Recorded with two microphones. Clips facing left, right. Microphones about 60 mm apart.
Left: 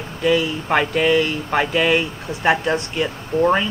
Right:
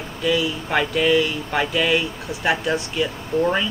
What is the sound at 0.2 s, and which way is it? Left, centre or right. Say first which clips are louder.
Speech: left 3 dB; left.